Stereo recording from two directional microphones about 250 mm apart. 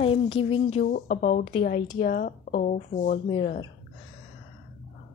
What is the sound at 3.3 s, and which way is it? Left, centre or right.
Speech, centre.